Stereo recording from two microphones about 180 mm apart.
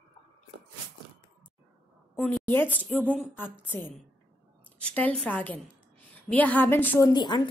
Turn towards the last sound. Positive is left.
turn(degrees=25)  # may be behind; listen again after turning